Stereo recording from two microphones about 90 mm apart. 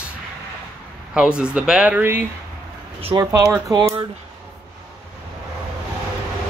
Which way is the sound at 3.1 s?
50° right (ahead or behind).